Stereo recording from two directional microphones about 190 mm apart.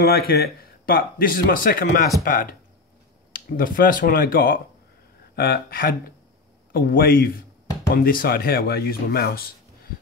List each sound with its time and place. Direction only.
0.0 s speech: 55° left (ahead or behind)